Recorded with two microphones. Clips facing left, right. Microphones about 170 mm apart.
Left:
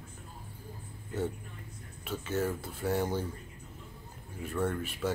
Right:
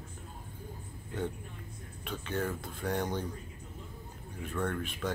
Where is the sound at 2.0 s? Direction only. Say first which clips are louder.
Left 3 dB; 5° left (ahead or behind).